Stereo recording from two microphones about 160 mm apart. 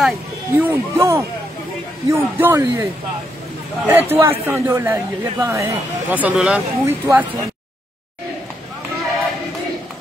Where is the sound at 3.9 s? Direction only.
15° right (ahead or behind).